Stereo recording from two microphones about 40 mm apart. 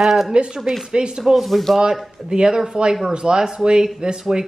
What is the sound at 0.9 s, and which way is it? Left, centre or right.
Speech, centre.